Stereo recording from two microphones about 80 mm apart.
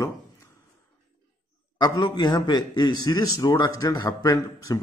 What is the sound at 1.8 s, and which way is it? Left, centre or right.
A man's voice, left.